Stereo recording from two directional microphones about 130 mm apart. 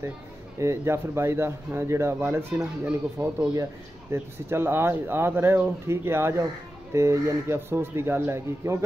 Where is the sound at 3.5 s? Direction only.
20° right (ahead or behind).